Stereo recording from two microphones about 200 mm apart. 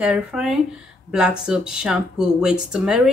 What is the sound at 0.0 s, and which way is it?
A woman's voice, 5° right (ahead or behind).